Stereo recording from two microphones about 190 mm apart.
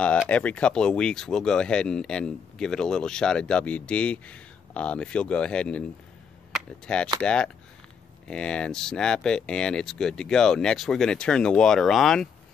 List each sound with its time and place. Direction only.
0.0 s speech: 5° left (ahead or behind)